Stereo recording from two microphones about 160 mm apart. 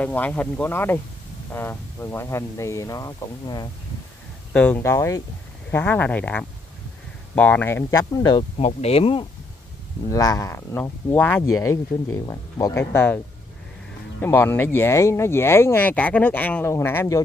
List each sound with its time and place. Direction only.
0.0 s speech: 10° left (ahead or behind)
4.6 s speech: 10° left (ahead or behind)
8.5 s speech: 40° left (ahead or behind)
10.0 s speech: 20° left (ahead or behind)
14.2 s speech: 15° left (ahead or behind)